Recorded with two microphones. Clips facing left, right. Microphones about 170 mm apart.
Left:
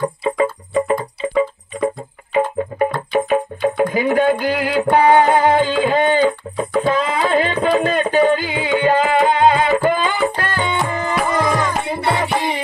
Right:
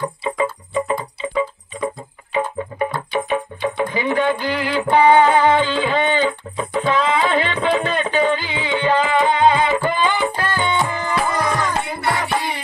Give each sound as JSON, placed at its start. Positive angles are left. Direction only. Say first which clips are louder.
{"t": 0.2, "sound": "music", "louder": "left 3 dB", "side_deg": 35}
{"t": 3.1, "sound": "music", "louder": "left 5 dB", "side_deg": 45}
{"t": 10.9, "sound": "music", "louder": "left 2 dB", "side_deg": 25}